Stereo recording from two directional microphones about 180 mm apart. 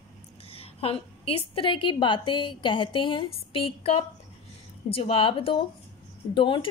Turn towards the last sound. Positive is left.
turn(degrees=30)  # may be behind; listen again after turning